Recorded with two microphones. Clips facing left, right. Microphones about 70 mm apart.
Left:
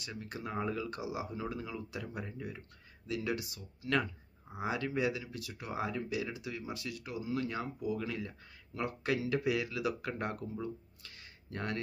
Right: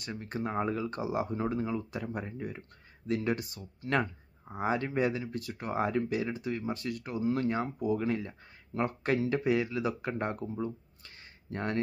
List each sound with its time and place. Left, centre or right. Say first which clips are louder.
0.0 s speech: right 6 dB; right